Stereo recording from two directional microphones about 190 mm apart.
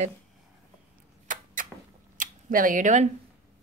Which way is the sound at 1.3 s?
45° right (ahead or behind).